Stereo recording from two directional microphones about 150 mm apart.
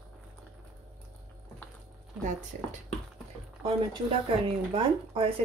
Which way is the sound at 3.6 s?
40° right (ahead or behind).